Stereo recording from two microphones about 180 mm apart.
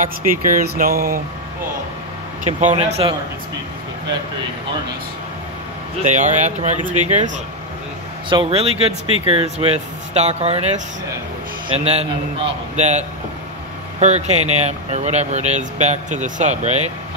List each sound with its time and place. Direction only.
0.0 s speech: 50° right (ahead or behind)
2.4 s speech: 40° right (ahead or behind)
6.0 s speech: 40° right (ahead or behind)
8.3 s speech: 30° right (ahead or behind)